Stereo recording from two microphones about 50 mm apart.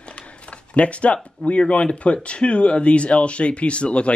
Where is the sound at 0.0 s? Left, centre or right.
Left.